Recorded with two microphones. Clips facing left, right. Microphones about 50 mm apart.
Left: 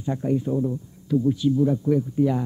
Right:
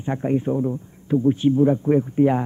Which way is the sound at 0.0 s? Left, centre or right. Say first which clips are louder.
Right 2 dB; right.